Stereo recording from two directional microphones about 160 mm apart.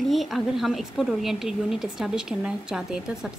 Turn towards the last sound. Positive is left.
turn(degrees=-5)  # may be behind; listen again after turning